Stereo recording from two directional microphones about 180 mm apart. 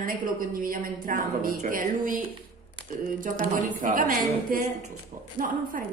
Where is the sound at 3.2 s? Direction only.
45° right (ahead or behind).